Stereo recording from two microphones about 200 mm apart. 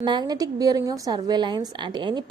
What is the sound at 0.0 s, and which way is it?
A woman's voice, 20° right (ahead or behind).